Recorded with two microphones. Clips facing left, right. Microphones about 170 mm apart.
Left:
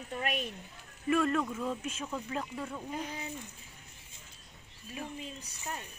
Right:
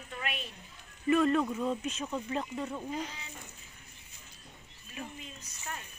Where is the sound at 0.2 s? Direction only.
45° left (ahead or behind).